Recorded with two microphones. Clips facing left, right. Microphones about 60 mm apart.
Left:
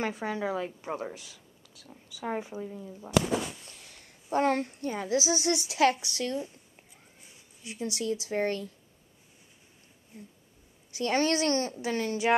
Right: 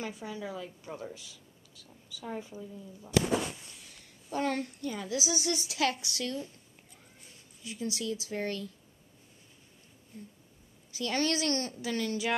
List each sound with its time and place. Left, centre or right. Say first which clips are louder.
0.0 s a woman's voice: left 7 dB; left
1.1 s a sound: left 2 dB; left
2.2 s a woman's voice: left 6 dB; left
7.6 s speech: left 3 dB; left
10.1 s a woman's voice: even; left
11.0 s a woman's voice: left 4 dB; left